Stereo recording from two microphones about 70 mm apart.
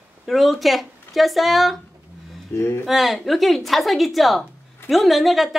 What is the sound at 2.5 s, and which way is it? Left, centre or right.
Speech, left.